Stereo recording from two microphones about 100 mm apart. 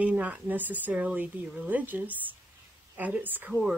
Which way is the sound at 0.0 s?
15° right (ahead or behind).